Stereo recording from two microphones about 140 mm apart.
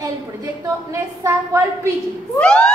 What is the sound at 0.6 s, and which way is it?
A woman's voice, 20° right (ahead or behind).